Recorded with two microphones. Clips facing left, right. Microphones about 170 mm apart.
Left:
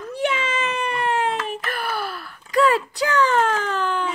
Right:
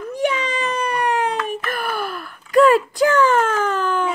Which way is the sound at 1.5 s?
45° right (ahead or behind).